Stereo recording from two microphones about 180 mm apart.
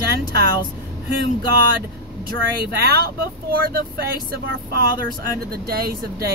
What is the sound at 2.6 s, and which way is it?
Speech, 60° right (ahead or behind).